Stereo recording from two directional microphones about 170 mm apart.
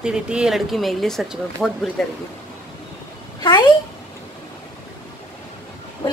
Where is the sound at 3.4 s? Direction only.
25° left (ahead or behind).